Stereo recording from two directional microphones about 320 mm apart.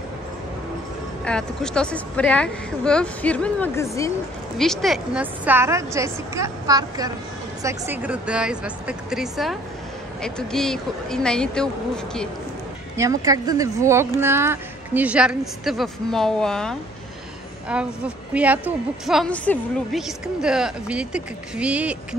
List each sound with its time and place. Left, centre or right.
1.2 s a woman's voice: centre
12.9 s a woman's voice: centre